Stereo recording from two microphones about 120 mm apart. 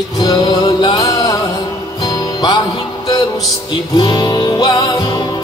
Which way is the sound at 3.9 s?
40° left (ahead or behind).